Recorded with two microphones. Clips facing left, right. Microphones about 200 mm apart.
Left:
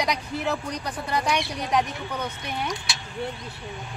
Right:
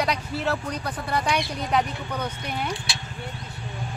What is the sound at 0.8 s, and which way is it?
Speech, 10° right (ahead or behind).